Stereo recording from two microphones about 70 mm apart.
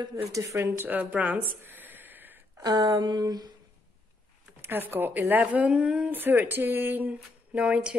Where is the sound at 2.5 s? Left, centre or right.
Right.